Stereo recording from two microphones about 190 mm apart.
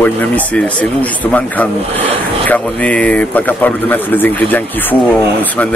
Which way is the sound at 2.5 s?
5° left (ahead or behind).